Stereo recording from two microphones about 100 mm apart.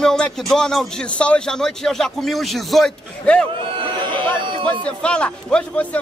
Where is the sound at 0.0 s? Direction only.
5° left (ahead or behind).